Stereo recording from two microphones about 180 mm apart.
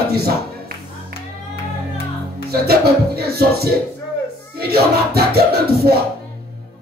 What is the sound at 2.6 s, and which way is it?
Music, 60° right (ahead or behind).